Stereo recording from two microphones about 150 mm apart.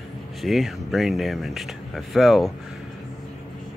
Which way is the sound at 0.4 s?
Centre (ahead or behind).